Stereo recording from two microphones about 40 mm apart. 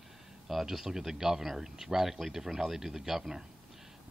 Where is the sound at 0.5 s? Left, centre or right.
Centre.